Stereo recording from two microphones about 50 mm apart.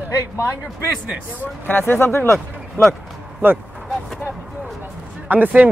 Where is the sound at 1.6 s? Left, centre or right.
Left.